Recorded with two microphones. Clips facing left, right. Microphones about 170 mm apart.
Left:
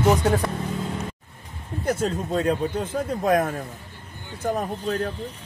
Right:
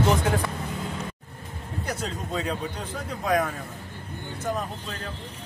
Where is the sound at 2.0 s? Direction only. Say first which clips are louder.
Left 6 dB; 50° left (ahead or behind).